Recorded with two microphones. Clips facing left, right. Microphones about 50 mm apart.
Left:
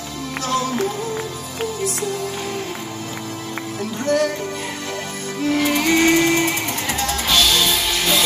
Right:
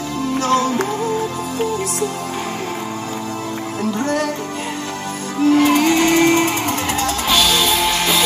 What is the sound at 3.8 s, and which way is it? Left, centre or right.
Music, right.